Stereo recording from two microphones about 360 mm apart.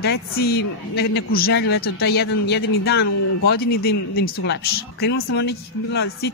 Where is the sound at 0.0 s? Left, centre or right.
Left.